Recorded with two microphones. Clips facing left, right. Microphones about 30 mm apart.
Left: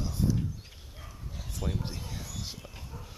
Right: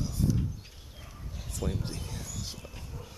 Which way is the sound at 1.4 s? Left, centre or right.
Centre.